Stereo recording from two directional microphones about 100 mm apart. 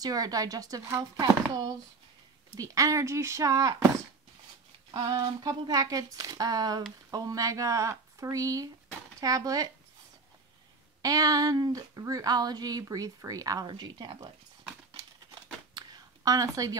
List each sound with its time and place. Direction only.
0.0 s speech: 40° right (ahead or behind)
4.9 s speech: 40° right (ahead or behind)
11.0 s speech: 35° right (ahead or behind)
15.7 s a sound: 40° right (ahead or behind)